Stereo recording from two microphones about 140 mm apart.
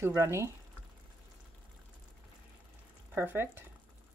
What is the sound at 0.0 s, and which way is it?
Speech, 20° right (ahead or behind).